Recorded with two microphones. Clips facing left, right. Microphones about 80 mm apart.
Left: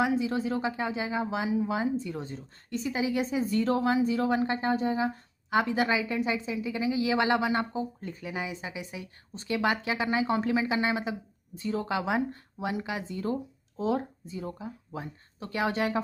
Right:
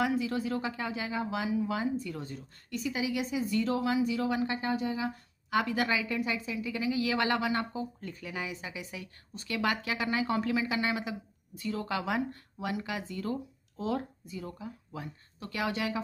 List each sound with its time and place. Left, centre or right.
0.0 s speech: left